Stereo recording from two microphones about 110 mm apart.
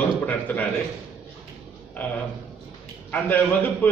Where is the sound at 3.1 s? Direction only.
15° left (ahead or behind).